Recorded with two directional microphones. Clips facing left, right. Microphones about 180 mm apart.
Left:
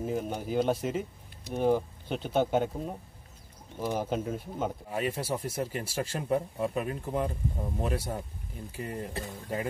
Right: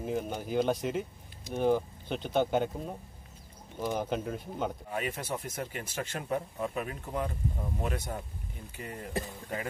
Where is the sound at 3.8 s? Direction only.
5° left (ahead or behind).